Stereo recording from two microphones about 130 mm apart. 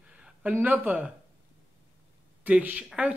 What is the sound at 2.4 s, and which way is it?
Speech, 10° right (ahead or behind).